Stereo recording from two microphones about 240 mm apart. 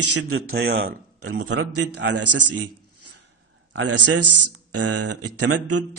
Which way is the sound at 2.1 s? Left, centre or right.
Right.